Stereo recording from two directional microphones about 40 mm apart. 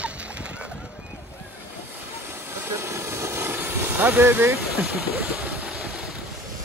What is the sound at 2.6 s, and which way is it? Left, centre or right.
Vehicle, right.